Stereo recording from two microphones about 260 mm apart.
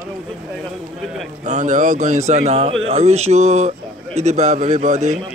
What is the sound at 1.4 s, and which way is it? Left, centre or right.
Speech, right.